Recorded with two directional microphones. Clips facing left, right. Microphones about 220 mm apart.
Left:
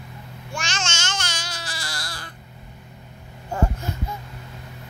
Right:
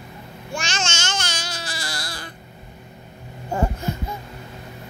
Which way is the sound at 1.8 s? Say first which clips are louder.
Right 3 dB; 20° right (ahead or behind).